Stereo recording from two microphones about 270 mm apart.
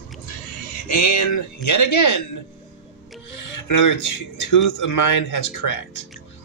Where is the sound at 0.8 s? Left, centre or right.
Left.